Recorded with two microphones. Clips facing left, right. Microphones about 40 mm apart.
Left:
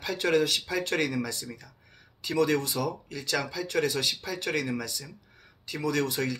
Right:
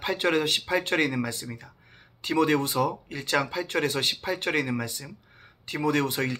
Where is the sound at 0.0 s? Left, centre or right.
Right.